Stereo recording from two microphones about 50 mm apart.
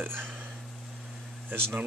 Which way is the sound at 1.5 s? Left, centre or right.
Right.